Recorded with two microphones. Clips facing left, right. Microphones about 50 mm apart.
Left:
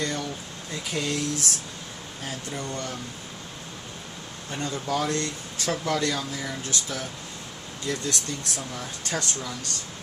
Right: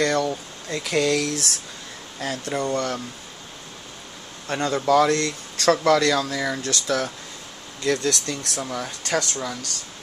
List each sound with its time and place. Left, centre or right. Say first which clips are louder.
0.0 s speech: right 8 dB; right
2.1 s speech: right 8 dB; right
4.5 s speech: right 9 dB; right
8.7 s speech: right 8 dB; right